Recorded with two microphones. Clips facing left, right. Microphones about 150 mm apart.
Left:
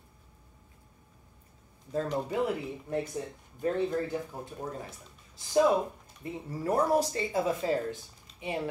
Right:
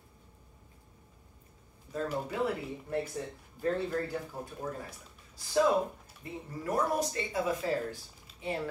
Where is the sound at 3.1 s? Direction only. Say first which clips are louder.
Left 2 dB; 15° left (ahead or behind).